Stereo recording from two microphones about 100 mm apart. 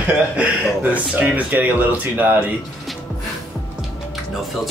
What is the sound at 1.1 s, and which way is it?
Speech, 15° right (ahead or behind).